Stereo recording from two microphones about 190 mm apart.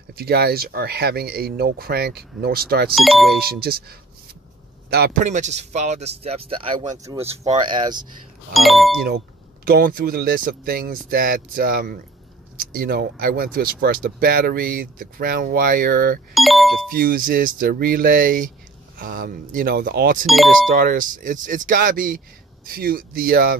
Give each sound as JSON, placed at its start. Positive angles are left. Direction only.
{"t": 0.1, "sound": "speech", "side_deg": -55}
{"t": 2.9, "sound": "speech", "side_deg": 0}
{"t": 3.3, "sound": "speech", "side_deg": -55}
{"t": 4.8, "sound": "a sound", "side_deg": -55}
{"t": 5.2, "sound": "speech", "side_deg": -40}
{"t": 8.5, "sound": "speech", "side_deg": 0}
{"t": 9.7, "sound": "speech", "side_deg": -50}
{"t": 16.3, "sound": "speech", "side_deg": 0}
{"t": 16.9, "sound": "speech", "side_deg": -50}
{"t": 20.2, "sound": "speech", "side_deg": 0}
{"t": 20.6, "sound": "speech", "side_deg": -45}